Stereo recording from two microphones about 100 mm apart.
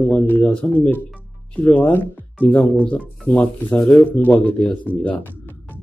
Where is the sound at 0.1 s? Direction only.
15° left (ahead or behind).